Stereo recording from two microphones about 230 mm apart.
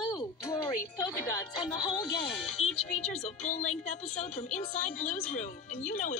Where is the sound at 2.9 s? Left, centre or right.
Left.